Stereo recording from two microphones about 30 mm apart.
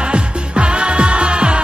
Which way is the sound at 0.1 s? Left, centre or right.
Right.